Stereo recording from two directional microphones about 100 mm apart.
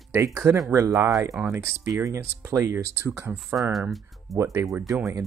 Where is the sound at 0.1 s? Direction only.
25° right (ahead or behind).